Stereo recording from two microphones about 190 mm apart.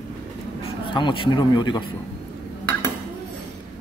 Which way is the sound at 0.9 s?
25° left (ahead or behind).